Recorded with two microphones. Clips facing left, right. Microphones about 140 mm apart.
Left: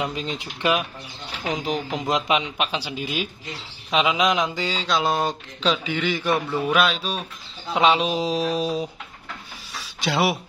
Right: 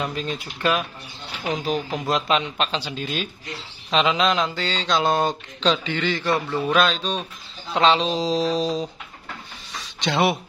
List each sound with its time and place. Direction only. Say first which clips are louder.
0.0 s speech: even; 20° left (ahead or behind)
9.9 s speech: right 1 dB; 5° left (ahead or behind)